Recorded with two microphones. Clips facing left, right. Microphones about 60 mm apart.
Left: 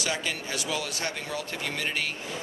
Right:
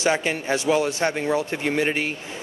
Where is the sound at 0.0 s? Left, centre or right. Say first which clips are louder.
Right 9 dB; right.